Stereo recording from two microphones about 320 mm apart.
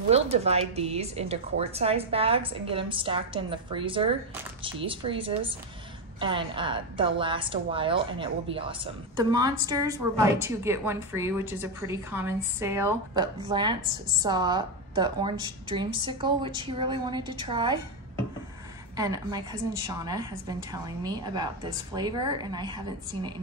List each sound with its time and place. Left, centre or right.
0.1 s a woman's voice: centre
18.9 s a woman's voice: centre